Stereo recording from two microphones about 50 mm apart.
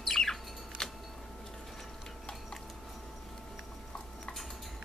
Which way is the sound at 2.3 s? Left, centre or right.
Centre.